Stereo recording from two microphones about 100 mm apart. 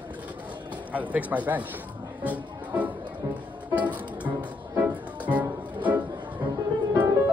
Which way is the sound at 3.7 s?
15° right (ahead or behind).